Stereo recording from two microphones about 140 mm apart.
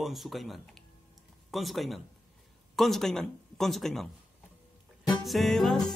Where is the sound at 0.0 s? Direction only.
Centre (ahead or behind).